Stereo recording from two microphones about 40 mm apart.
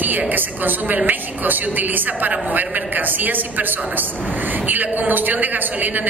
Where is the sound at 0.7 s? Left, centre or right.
Right.